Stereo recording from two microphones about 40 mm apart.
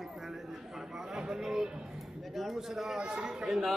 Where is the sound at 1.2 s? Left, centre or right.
Centre.